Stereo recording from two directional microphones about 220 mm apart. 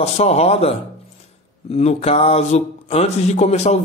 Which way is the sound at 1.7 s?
30° left (ahead or behind).